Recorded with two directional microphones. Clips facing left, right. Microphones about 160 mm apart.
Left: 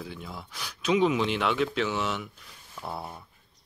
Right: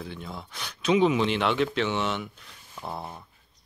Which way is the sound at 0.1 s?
5° left (ahead or behind).